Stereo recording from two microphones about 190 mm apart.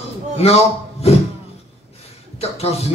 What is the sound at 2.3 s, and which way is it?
Music, 35° left (ahead or behind).